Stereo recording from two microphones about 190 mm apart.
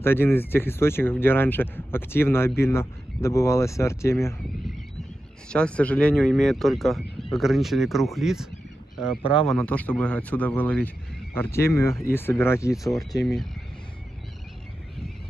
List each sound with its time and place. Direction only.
0.0 s speech: 10° left (ahead or behind)
5.5 s speech: 5° left (ahead or behind)
13.2 s speech: centre (ahead or behind)